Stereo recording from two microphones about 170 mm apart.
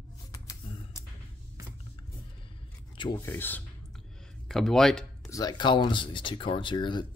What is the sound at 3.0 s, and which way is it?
Speech, 25° left (ahead or behind).